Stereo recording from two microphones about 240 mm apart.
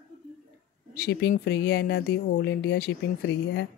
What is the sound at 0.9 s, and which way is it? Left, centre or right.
Speech, left.